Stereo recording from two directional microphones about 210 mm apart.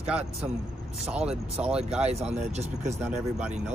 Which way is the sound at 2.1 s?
30° right (ahead or behind).